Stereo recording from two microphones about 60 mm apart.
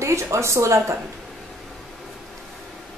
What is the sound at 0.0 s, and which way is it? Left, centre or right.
Speech, right.